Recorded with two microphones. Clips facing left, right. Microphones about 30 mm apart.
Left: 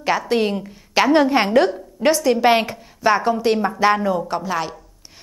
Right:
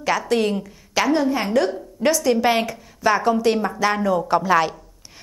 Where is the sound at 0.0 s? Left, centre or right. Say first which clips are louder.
Left 1 dB; left.